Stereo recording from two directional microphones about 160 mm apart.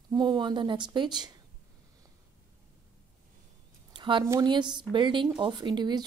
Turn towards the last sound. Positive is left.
turn(degrees=-25)  # may be behind; listen again after turning